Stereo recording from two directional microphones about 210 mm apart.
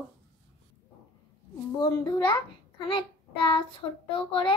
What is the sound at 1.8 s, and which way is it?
Speech, 20° left (ahead or behind).